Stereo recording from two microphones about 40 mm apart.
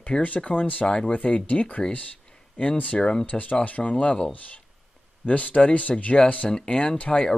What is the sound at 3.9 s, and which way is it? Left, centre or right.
Speech, left.